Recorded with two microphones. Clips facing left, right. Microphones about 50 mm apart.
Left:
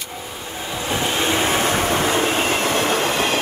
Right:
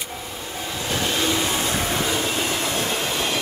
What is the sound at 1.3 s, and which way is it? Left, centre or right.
Vehicle, left.